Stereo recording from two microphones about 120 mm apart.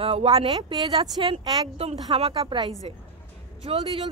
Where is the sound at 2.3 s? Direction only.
35° right (ahead or behind).